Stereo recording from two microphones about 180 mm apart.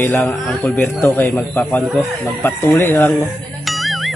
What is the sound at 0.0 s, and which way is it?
Speech, 10° left (ahead or behind).